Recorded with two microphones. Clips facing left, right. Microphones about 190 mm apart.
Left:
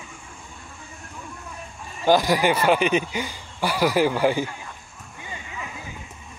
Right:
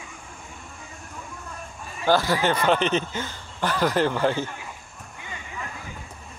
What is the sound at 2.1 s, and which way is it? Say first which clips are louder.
Speech: left 3 dB; 15° left (ahead or behind).